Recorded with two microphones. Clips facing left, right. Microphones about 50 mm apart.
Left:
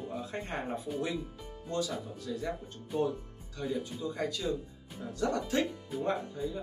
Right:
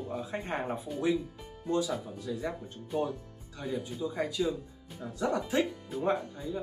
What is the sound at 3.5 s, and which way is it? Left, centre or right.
Speech, centre.